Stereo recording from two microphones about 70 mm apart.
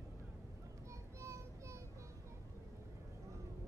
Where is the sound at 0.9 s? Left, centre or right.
Right.